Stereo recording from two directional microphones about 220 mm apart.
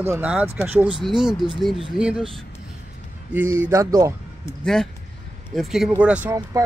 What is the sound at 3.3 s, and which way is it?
Speech, 10° right (ahead or behind).